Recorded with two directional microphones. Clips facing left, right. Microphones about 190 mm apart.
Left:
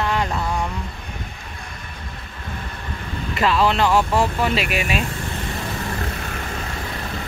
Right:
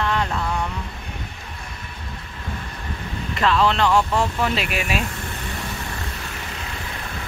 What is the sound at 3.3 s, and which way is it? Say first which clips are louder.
Speech: left 1 dB; 5° left (ahead or behind).